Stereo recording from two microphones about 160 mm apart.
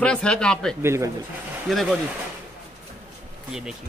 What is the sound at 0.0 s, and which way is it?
Speech, 5° left (ahead or behind).